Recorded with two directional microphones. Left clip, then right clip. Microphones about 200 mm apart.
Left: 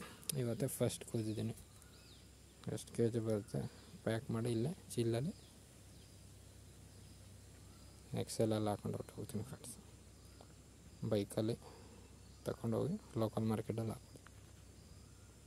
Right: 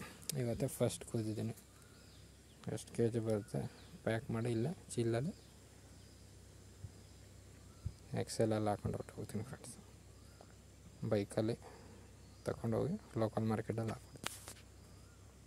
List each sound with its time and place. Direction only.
0.0 s speech: centre (ahead or behind)
2.6 s speech: centre (ahead or behind)
8.1 s speech: centre (ahead or behind)
11.1 s speech: centre (ahead or behind)